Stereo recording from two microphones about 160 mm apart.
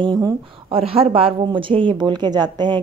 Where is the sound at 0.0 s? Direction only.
25° right (ahead or behind).